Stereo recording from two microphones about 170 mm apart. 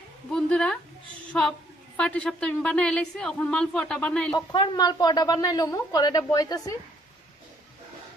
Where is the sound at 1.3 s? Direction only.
5° left (ahead or behind).